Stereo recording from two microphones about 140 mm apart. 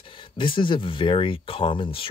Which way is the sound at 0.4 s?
35° left (ahead or behind).